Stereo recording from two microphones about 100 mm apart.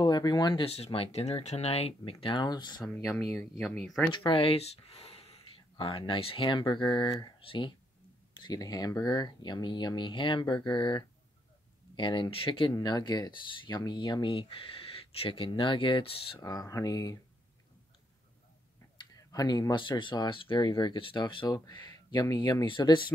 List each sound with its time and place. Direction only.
0.0 s speech: 45° left (ahead or behind)
0.7 s speech: 90° left; by 2.8 s 45° left (ahead or behind)
3.0 s speech: 5° left (ahead or behind)
4.1 s speech: 60° left (ahead or behind)
8.4 s speech: 45° left (ahead or behind); by 12.7 s 60° left (ahead or behind)
12.7 s speech: 45° left (ahead or behind); by 16.3 s 65° left (ahead or behind)
16.3 s speech: 35° left (ahead or behind)
19.1 s speech: 40° left (ahead or behind)
21.5 s speech: 40° left (ahead or behind)